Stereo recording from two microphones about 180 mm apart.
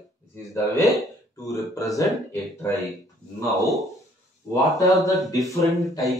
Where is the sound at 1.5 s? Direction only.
20° left (ahead or behind).